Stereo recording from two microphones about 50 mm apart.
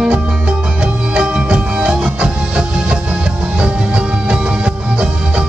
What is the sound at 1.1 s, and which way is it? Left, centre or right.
Music, right.